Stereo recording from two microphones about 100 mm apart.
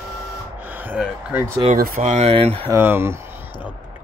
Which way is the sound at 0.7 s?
20° right (ahead or behind).